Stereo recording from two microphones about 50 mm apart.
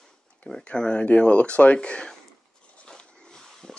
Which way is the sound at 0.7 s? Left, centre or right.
Centre.